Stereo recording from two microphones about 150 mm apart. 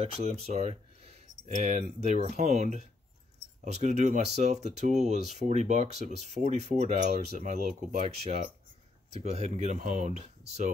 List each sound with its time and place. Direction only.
0.0 s speech: 45° right (ahead or behind)